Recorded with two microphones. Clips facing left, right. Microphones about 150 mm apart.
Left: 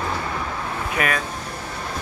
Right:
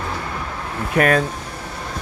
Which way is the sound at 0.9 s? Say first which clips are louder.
Right 8 dB; 40° right (ahead or behind).